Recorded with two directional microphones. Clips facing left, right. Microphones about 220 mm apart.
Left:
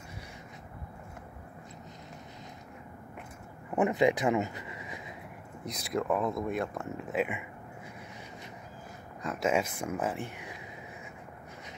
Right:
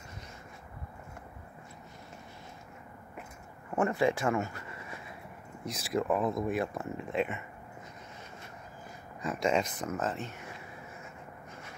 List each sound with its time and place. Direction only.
3.7 s a sound: 15° left (ahead or behind)
5.7 s speech: centre (ahead or behind)
9.2 s speech: centre (ahead or behind)